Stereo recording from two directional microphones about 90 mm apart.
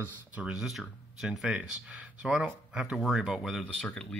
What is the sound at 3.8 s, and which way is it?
Speech, 10° left (ahead or behind).